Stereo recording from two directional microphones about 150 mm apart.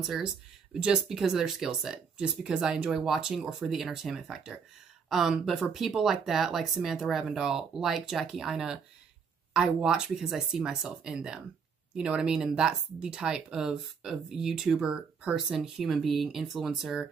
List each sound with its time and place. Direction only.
0.0 s speech: centre (ahead or behind)